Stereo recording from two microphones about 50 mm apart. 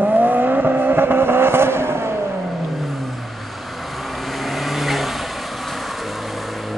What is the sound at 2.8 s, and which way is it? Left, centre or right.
Vehicle, centre.